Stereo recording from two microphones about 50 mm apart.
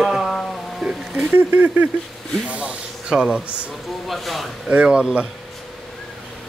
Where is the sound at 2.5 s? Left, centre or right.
Right.